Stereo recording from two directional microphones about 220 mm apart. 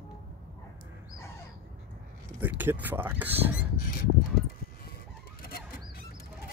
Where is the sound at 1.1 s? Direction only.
10° left (ahead or behind).